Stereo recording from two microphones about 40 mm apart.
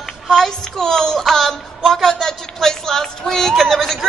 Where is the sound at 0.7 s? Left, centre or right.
Centre.